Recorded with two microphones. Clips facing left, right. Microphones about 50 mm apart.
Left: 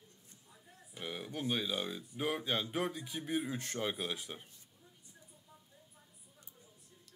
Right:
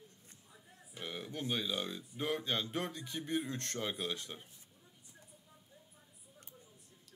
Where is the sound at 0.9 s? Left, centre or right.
Centre.